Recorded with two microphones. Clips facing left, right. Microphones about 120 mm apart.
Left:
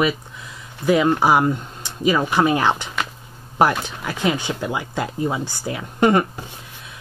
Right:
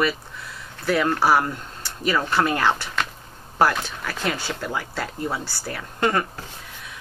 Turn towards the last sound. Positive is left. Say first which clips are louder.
# left 6 dB
turn(degrees=15)  # may be behind; listen again after turning